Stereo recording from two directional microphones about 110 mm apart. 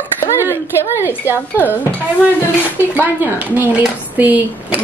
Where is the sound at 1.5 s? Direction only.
15° left (ahead or behind).